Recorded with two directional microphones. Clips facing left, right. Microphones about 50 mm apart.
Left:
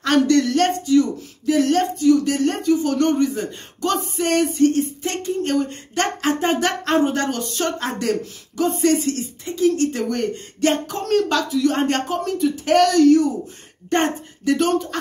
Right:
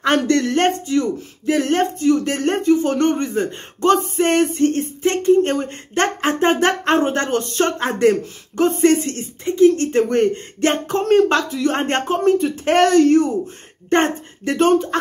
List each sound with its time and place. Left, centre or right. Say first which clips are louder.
0.0 s speech: even; right
13.8 s speech: right 3 dB; right